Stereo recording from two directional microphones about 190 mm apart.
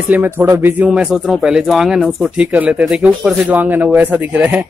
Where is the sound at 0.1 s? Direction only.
10° right (ahead or behind).